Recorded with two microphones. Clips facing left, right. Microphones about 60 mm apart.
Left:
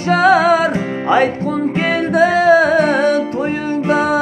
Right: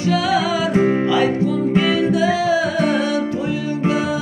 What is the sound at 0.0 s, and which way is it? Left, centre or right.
Music, left.